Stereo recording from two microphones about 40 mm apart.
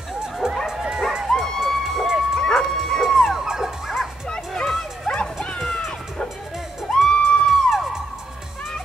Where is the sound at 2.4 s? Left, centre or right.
Centre.